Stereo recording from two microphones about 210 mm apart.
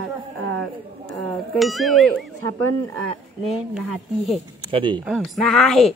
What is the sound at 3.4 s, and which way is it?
Speech, centre (ahead or behind).